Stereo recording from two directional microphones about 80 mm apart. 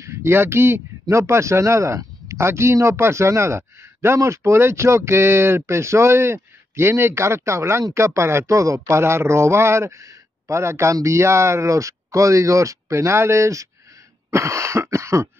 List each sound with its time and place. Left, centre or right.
0.1 s a man's voice: right